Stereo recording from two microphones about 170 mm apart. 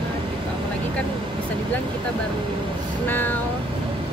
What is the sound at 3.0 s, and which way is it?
Speech, 10° left (ahead or behind).